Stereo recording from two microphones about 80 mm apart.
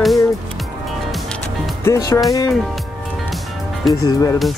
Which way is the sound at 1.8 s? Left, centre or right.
Left.